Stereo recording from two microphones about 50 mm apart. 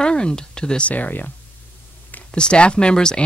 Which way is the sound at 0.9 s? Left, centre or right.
Left.